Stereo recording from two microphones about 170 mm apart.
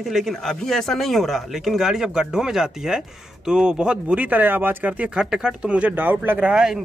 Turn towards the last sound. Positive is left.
turn(degrees=-5)  # may be behind; listen again after turning